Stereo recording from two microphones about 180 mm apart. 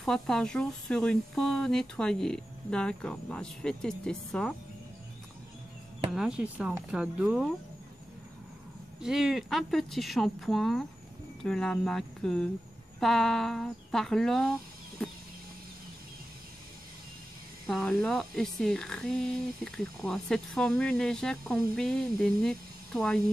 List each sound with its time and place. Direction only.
0.0 s speech: 5° left (ahead or behind)
6.1 s speech: 5° right (ahead or behind)
9.0 s speech: centre (ahead or behind)
17.6 s speech: centre (ahead or behind)